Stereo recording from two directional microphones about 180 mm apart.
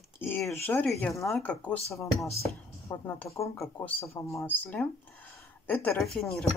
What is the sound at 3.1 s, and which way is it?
Speech, 15° left (ahead or behind).